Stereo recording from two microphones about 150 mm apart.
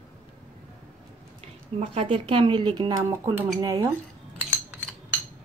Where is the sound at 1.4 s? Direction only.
40° right (ahead or behind).